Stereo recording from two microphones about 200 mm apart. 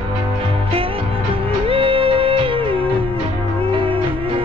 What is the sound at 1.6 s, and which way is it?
Music, 25° right (ahead or behind).